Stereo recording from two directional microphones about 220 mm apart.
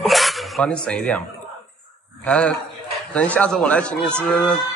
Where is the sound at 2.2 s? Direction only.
5° left (ahead or behind).